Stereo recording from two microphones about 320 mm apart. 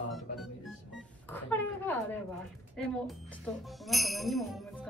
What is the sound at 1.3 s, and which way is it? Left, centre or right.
Speech, centre.